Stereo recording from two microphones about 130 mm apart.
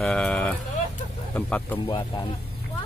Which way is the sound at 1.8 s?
40° left (ahead or behind).